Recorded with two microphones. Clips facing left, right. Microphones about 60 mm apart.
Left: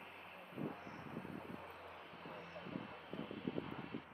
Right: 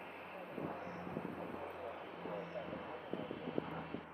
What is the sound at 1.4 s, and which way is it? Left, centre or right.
Vehicle, centre.